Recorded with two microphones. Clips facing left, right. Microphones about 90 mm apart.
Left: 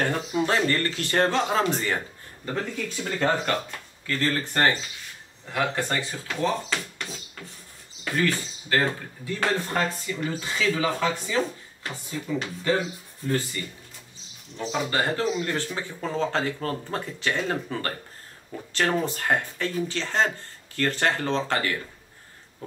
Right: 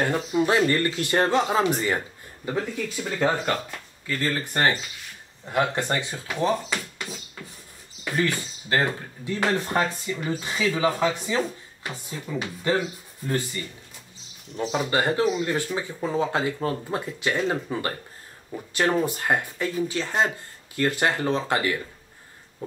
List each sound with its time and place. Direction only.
0.0 s speech: 5° right (ahead or behind)
5.4 s speech: 25° right (ahead or behind)
8.2 s speech: 15° right (ahead or behind)
14.6 s speech: 20° right (ahead or behind)